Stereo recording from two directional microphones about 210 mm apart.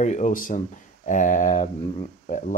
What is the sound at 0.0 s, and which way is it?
Speech, 35° left (ahead or behind).